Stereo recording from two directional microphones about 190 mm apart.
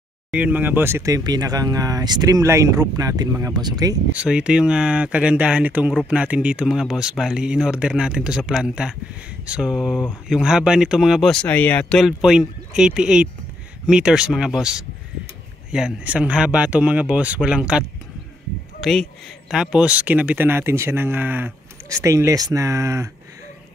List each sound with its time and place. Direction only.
0.3 s speech: 10° right (ahead or behind)
4.1 s speech: 5° right (ahead or behind)